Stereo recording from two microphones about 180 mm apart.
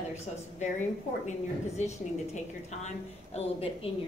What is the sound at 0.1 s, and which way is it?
A woman's voice, 40° left (ahead or behind).